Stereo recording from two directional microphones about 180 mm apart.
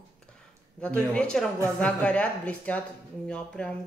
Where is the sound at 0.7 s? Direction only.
5° left (ahead or behind).